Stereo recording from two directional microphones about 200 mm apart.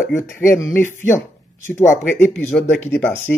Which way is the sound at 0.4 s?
15° left (ahead or behind).